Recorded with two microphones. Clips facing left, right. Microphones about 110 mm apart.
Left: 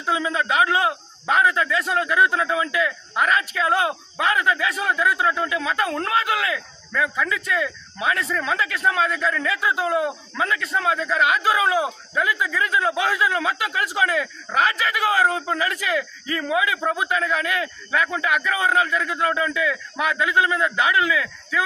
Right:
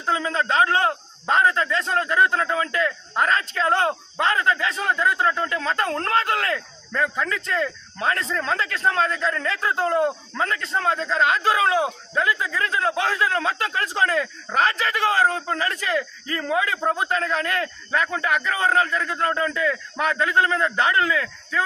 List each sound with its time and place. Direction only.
0.0 s a man's voice: 15° left (ahead or behind)
8.0 s a man's voice: 10° left (ahead or behind)
16.0 s speech: 35° right (ahead or behind)
16.9 s a man's voice: 10° left (ahead or behind)
21.1 s speech: 40° right (ahead or behind)